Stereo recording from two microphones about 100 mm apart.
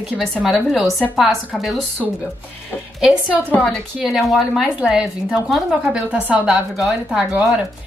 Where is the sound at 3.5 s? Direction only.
5° left (ahead or behind).